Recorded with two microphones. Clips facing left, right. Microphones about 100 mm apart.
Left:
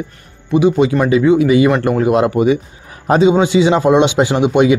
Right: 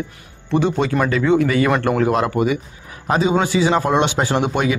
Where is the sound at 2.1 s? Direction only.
20° left (ahead or behind).